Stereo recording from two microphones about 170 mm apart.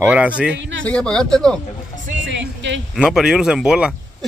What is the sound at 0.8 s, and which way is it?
Speech, 5° left (ahead or behind).